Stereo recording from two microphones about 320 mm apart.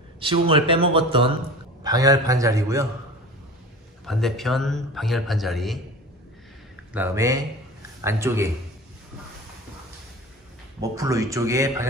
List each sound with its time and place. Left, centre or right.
0.2 s speech: centre
4.0 s a man's voice: centre
6.9 s speech: centre
10.8 s speech: centre